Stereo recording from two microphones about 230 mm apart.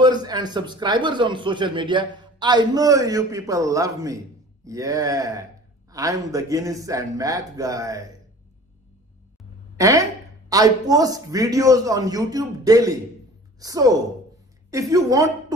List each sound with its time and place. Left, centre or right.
0.0 s speech: centre
9.8 s a woman's voice: centre